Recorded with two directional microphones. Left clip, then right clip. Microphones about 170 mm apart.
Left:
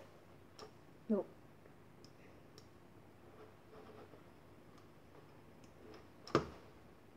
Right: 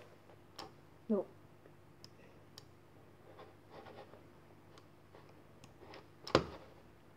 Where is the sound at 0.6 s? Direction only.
50° right (ahead or behind).